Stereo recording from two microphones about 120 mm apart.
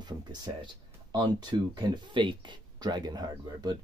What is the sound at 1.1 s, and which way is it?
Speech, 35° right (ahead or behind).